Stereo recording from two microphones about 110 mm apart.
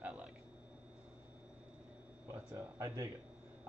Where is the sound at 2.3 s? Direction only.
30° right (ahead or behind).